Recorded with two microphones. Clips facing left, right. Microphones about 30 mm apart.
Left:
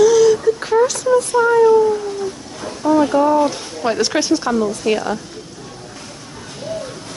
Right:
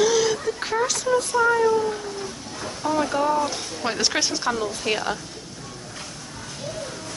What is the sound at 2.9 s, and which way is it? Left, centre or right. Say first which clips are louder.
Speech: left 8 dB; centre.